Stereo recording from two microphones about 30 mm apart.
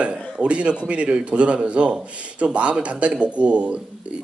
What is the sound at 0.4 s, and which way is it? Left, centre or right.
A man's voice, right.